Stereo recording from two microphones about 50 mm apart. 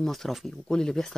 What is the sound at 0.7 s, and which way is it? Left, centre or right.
Speech, centre.